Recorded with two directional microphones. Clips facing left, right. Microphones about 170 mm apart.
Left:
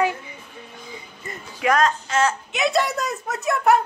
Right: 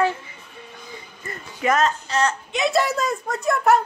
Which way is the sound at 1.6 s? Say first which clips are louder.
Left 1 dB; 5° right (ahead or behind).